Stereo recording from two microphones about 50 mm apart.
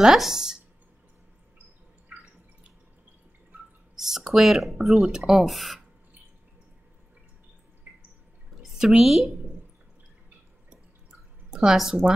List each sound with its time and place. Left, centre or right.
0.0 s speech: centre
3.9 s speech: centre
7.9 s drip: right
8.5 s a woman's voice: centre
11.5 s speech: centre